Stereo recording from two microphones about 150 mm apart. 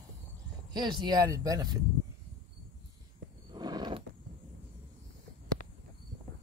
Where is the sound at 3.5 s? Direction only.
30° right (ahead or behind).